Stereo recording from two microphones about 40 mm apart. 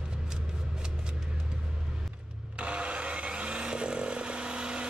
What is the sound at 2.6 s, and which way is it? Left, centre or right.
Chainsaw, right.